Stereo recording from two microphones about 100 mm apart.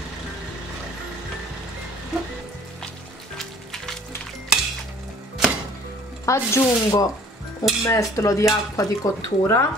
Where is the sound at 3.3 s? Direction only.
5° left (ahead or behind).